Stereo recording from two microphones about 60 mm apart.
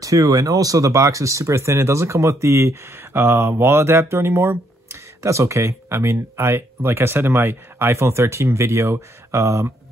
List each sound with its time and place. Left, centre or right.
0.0 s speech: right